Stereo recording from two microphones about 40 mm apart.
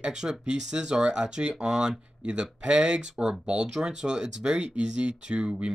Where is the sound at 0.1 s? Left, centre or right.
Centre.